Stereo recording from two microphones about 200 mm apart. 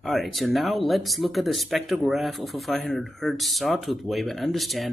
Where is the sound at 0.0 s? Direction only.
Centre (ahead or behind).